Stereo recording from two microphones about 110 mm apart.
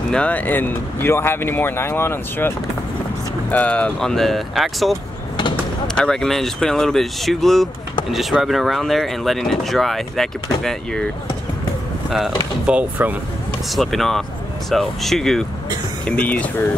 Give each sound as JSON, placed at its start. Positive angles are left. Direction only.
{"t": 0.1, "sound": "speech", "side_deg": 10}
{"t": 5.9, "sound": "speech", "side_deg": 5}
{"t": 12.1, "sound": "speech", "side_deg": -5}
{"t": 13.7, "sound": "speech", "side_deg": 0}
{"t": 16.1, "sound": "speech", "side_deg": 15}